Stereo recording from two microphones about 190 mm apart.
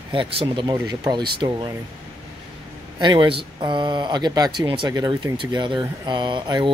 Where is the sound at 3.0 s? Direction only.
25° right (ahead or behind).